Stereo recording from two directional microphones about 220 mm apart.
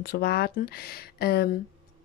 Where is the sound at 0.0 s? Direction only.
45° left (ahead or behind).